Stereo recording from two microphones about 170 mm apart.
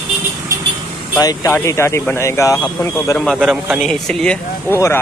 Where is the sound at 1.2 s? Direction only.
20° left (ahead or behind).